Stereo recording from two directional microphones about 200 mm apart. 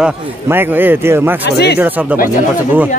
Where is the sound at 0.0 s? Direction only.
10° right (ahead or behind).